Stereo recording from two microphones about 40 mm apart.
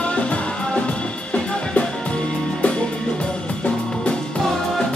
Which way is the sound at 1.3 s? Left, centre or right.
Left.